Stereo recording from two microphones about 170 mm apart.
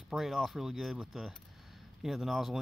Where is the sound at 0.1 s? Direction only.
Centre (ahead or behind).